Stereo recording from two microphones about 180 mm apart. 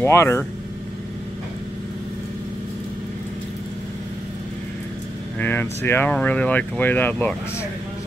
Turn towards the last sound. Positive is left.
turn(degrees=10)  # may be behind; listen again after turning